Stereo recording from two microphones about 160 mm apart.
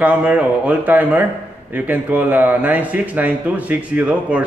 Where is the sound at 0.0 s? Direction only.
10° right (ahead or behind).